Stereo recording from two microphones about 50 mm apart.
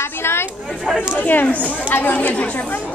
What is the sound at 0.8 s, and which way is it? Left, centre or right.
Speech, centre.